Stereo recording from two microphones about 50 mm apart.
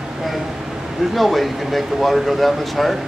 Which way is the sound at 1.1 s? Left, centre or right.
Centre.